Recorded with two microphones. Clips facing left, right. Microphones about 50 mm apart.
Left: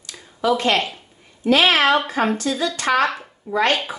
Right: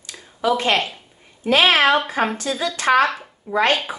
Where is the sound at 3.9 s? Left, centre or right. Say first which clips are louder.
Even; right.